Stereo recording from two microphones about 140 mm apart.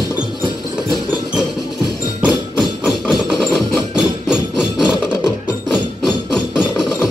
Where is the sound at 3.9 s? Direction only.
5° right (ahead or behind).